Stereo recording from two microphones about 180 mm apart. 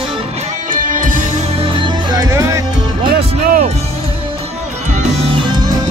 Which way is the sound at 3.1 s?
55° right (ahead or behind).